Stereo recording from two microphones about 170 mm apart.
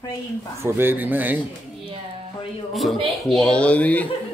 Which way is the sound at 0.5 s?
15° right (ahead or behind).